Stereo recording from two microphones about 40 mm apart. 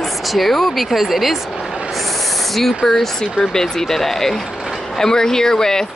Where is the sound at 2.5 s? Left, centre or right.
Centre.